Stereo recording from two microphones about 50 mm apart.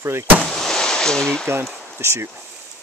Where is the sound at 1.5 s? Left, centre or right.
Right.